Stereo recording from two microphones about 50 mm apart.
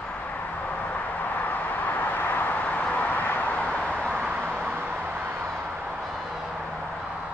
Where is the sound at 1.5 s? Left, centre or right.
Left.